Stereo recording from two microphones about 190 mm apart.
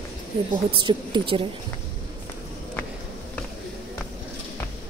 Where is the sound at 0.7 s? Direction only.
25° right (ahead or behind).